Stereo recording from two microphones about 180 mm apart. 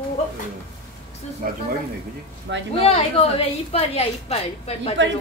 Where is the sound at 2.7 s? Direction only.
35° left (ahead or behind).